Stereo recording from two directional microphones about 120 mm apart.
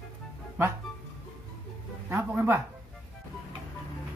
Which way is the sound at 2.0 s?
20° right (ahead or behind).